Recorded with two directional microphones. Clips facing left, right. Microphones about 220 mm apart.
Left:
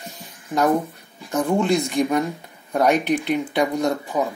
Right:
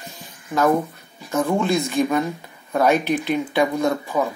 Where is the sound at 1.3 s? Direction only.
15° left (ahead or behind).